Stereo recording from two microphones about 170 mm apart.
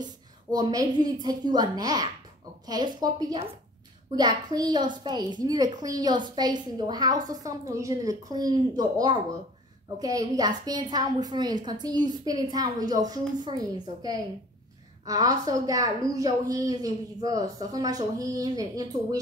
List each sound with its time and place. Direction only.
0.0 s a child's voice: 25° right (ahead or behind)